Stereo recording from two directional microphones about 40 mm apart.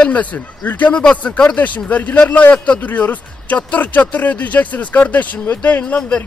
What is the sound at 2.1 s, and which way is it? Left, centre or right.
Speech, left.